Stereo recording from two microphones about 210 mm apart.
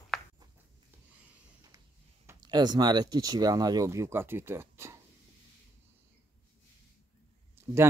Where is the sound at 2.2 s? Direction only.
20° right (ahead or behind).